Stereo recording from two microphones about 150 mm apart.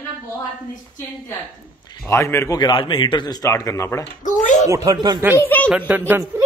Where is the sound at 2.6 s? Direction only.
30° left (ahead or behind).